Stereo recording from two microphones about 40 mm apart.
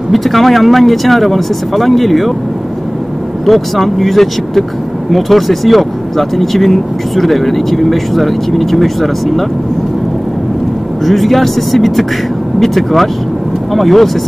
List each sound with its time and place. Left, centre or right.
0.1 s speech: centre
3.4 s speech: centre
11.1 s speech: centre